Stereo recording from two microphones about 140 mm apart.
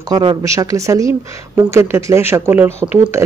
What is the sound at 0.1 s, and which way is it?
Speech, 35° right (ahead or behind).